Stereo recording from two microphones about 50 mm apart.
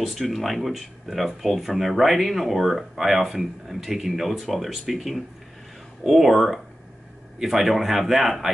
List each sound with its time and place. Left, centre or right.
0.0 s speech: centre